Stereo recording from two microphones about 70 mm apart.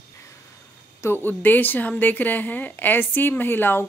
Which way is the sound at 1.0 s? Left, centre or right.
Left.